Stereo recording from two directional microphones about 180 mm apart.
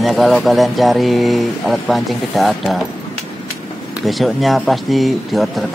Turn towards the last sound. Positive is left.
turn(degrees=0)  # may be behind; listen again after turning